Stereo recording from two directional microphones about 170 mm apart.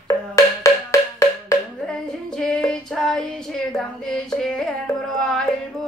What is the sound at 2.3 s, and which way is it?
Female singing, 5° left (ahead or behind).